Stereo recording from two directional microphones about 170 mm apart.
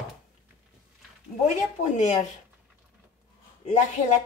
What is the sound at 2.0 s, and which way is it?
Speech, 45° left (ahead or behind).